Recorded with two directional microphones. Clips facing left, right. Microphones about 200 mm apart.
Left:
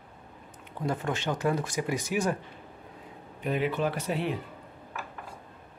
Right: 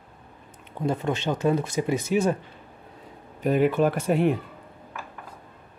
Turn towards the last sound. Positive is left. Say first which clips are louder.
# right 8 dB
turn(degrees=-50)  # may be behind; listen again after turning